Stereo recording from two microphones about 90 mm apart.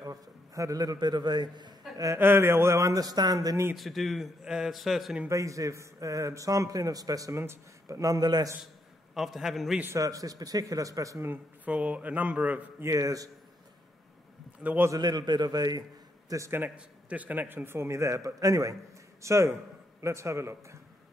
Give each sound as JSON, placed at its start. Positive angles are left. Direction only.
{"t": 0.0, "sound": "a man's voice", "side_deg": -40}
{"t": 2.1, "sound": "a man's voice", "side_deg": -25}
{"t": 3.7, "sound": "a man's voice", "side_deg": 0}
{"t": 5.3, "sound": "a man's voice", "side_deg": -35}
{"t": 9.1, "sound": "a man's voice", "side_deg": 0}
{"t": 9.9, "sound": "a man's voice", "side_deg": -40}
{"t": 11.2, "sound": "a man's voice", "side_deg": -15}
{"t": 12.8, "sound": "a man's voice", "side_deg": -40}
{"t": 14.6, "sound": "a man's voice", "side_deg": -20}
{"t": 14.9, "sound": "a man's voice", "side_deg": -50}
{"t": 16.3, "sound": "a man's voice", "side_deg": -35}
{"t": 16.5, "sound": "a man's voice", "side_deg": -15}